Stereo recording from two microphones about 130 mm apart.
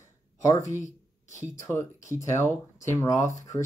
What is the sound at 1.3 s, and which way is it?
Speech, 20° left (ahead or behind).